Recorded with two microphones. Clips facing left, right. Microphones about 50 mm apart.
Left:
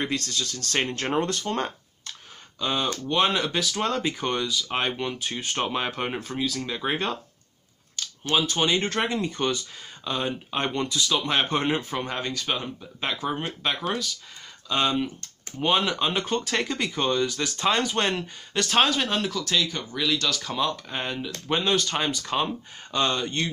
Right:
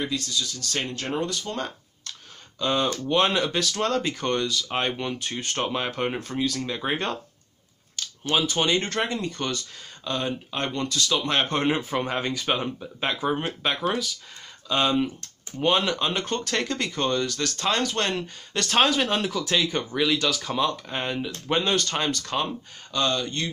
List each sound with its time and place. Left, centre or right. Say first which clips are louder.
0.1 s speech: even; left
2.6 s speech: right 2 dB; centre
8.4 s speech: even; centre
11.1 s speech: right 1 dB; centre
13.2 s speech: right 3 dB; centre; by 23.5 s left